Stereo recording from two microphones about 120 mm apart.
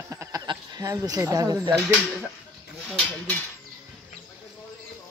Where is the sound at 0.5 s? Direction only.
30° right (ahead or behind).